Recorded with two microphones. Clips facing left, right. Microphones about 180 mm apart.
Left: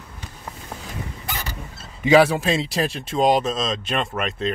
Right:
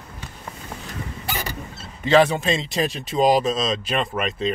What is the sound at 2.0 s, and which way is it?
Speech, 5° left (ahead or behind).